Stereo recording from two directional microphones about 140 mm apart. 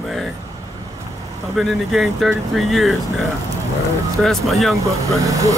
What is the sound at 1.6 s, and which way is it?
Speech, centre (ahead or behind).